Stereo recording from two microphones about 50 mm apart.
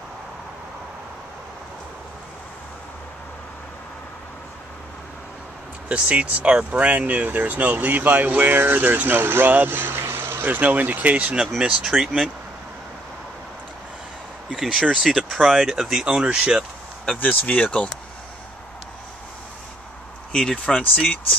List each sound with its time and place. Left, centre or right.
5.9 s speech: right
10.6 s speech: right; by 12.1 s centre
14.5 s speech: centre
16.3 s speech: right
17.2 s speech: left
20.3 s speech: centre